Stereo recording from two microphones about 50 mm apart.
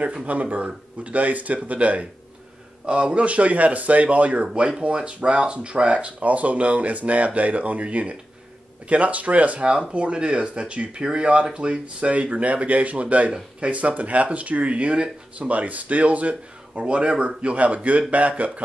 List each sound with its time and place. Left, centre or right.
0.0 s speech: right